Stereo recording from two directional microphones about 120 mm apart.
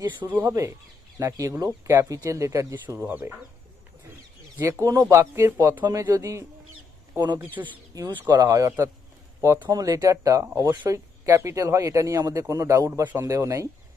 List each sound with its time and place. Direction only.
0.3 s speech: 20° right (ahead or behind)
4.6 s speech: 25° right (ahead or behind)
7.3 s speech: 15° right (ahead or behind)
8.1 s speech: 40° right (ahead or behind)
8.5 s speech: 25° right (ahead or behind)